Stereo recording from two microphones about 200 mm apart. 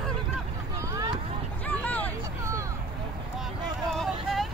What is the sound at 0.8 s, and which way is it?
Vehicle, 15° right (ahead or behind).